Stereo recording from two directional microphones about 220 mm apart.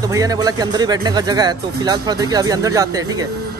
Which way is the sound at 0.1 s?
15° right (ahead or behind).